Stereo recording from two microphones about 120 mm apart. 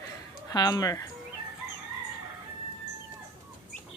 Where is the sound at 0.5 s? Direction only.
30° left (ahead or behind).